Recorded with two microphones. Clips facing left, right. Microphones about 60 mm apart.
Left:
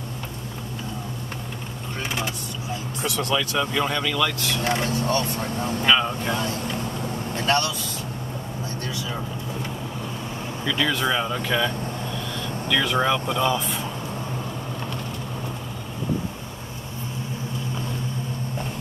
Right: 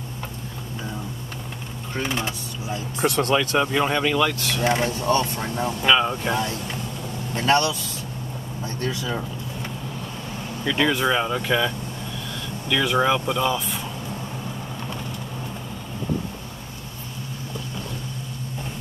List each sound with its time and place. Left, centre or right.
3.0 s speech: right; by 4.8 s centre
4.8 s speech: right
5.9 s speech: centre
7.4 s speech: right
10.8 s speech: centre